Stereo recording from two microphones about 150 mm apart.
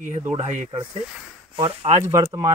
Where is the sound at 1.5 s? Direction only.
40° right (ahead or behind).